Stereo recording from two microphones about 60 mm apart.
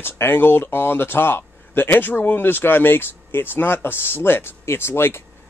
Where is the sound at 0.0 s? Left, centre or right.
Left.